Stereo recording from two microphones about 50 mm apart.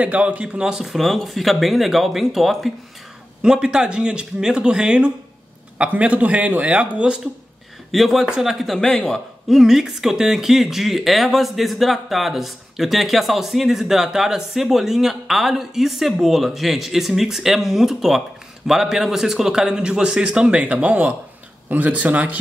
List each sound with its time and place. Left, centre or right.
0.0 s speech: right
0.8 s speech: centre
3.4 s speech: centre
7.9 s a man's voice: centre
8.7 s a man's voice: centre
9.5 s a man's voice: centre; by 22.4 s right